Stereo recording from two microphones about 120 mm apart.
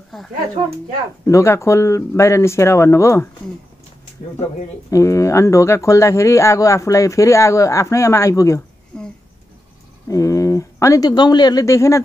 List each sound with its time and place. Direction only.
0.1 s speech: centre (ahead or behind)
1.2 s speech: 25° left (ahead or behind)
4.9 s speech: 25° left (ahead or behind)
8.9 s a sound: 5° left (ahead or behind)
10.0 s speech: 25° left (ahead or behind)